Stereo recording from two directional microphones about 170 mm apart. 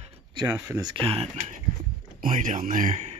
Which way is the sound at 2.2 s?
50° right (ahead or behind).